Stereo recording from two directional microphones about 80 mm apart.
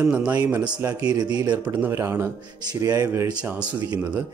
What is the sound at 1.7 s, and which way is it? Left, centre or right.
Speech, right.